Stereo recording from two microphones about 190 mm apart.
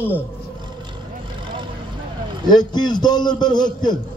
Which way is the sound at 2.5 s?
20° left (ahead or behind).